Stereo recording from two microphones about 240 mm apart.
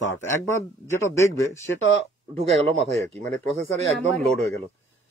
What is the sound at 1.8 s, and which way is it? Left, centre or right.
Speech, left.